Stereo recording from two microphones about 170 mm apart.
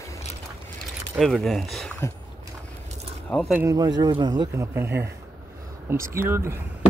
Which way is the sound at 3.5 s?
20° right (ahead or behind).